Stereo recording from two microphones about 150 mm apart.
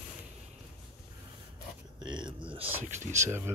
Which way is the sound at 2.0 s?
30° right (ahead or behind).